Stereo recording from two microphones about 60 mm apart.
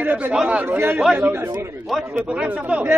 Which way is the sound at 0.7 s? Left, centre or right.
Right.